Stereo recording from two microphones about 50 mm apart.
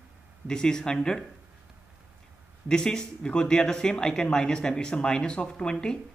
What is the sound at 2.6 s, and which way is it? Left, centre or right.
Speech, centre.